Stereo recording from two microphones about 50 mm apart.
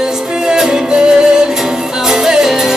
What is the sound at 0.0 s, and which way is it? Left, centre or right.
Music, centre.